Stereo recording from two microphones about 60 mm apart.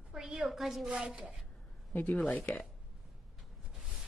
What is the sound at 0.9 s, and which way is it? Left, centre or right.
Speech, centre.